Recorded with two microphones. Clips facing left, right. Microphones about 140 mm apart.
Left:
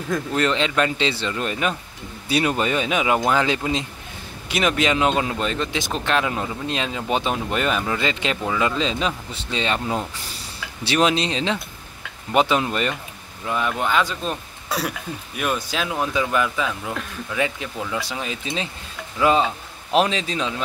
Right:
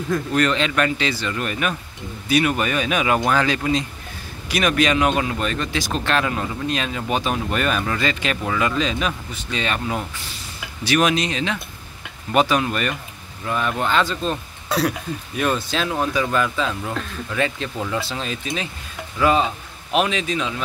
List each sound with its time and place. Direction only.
0.3 s speech: 20° left (ahead or behind); by 17.4 s 5° left (ahead or behind)
18.0 s speech: 15° left (ahead or behind)
19.9 s speech: 30° left (ahead or behind)